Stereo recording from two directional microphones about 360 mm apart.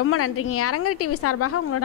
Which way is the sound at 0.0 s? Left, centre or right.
Left.